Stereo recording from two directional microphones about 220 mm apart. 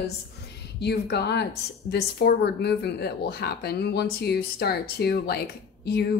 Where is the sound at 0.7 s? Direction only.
50° left (ahead or behind).